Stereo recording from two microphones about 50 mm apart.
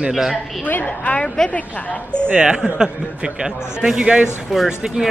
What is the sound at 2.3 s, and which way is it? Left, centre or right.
Speech, centre.